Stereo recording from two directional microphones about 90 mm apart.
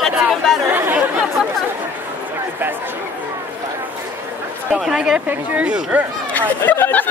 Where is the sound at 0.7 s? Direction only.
25° right (ahead or behind).